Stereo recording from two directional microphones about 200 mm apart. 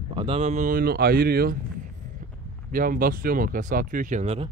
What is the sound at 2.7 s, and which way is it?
Speech, 45° right (ahead or behind).